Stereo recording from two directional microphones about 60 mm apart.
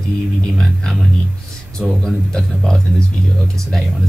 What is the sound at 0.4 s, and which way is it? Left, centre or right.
Speech, centre.